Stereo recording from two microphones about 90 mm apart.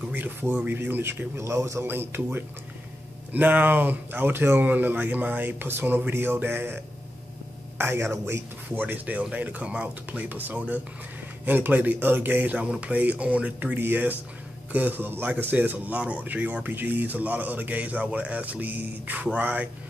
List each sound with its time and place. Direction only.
0.1 s speech: 20° right (ahead or behind)